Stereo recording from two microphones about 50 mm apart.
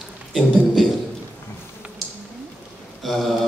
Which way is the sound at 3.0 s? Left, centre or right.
Centre.